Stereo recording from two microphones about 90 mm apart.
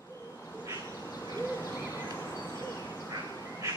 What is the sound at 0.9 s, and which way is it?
Owl, 35° left (ahead or behind).